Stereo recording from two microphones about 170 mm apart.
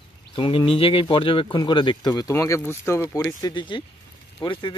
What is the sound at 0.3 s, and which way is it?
Speech, 30° left (ahead or behind).